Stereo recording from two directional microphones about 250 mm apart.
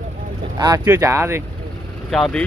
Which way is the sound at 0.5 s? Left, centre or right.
Centre.